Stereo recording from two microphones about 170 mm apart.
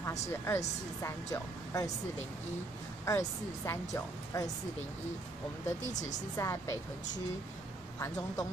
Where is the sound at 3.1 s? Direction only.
20° left (ahead or behind).